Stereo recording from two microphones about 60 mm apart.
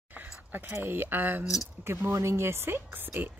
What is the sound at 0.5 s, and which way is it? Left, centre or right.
Speech, right.